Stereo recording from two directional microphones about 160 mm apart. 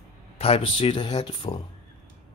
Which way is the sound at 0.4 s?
35° left (ahead or behind).